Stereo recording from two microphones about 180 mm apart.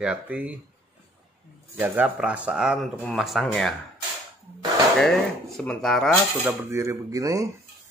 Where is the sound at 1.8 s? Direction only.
10° right (ahead or behind).